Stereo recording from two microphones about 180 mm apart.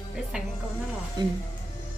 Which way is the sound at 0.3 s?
5° right (ahead or behind).